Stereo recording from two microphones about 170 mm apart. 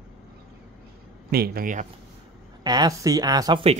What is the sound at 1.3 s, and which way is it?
Speech, 65° right (ahead or behind).